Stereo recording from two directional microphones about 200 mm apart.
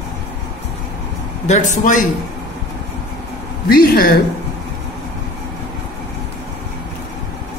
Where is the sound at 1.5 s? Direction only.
40° left (ahead or behind).